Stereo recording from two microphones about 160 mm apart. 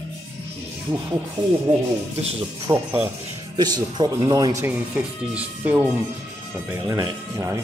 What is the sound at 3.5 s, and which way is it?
A man's voice, 25° right (ahead or behind).